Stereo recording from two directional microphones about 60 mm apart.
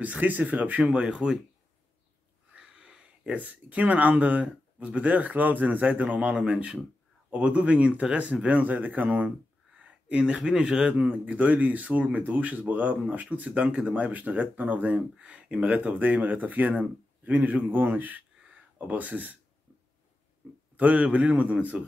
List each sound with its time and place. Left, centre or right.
0.0 s speech: right
0.9 s speech: centre
2.5 s a sound: centre
3.3 s speech: right
20.7 s speech: right